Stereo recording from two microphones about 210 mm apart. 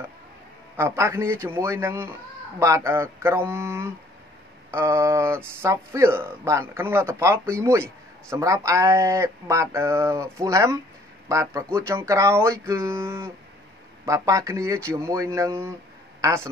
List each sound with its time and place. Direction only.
0.7 s a woman's voice: 10° right (ahead or behind)